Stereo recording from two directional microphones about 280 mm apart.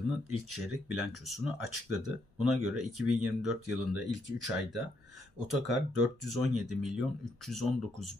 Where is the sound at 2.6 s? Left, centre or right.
Right.